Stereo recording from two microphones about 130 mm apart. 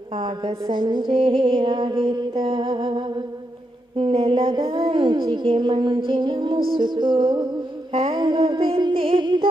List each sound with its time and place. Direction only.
0.1 s music: 40° right (ahead or behind)
4.0 s music: 50° right (ahead or behind)